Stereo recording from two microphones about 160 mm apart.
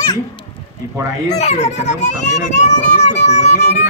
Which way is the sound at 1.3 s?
45° left (ahead or behind).